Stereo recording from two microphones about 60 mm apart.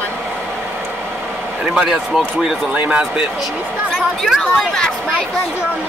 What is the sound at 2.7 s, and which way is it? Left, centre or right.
Speech, centre.